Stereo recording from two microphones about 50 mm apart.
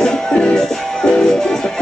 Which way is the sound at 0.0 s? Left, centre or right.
Centre.